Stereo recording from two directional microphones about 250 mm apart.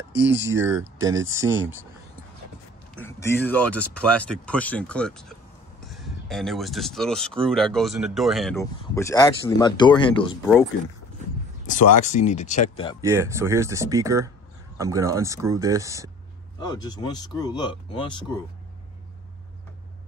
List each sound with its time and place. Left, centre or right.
0.2 s speech: centre
3.1 s speech: centre
8.5 s speech: centre
11.6 s speech: left
13.0 s speech: centre
16.5 s speech: centre